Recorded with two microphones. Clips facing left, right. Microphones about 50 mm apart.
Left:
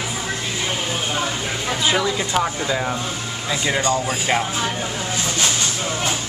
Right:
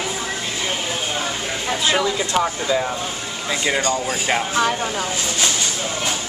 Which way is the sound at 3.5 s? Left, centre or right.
Centre.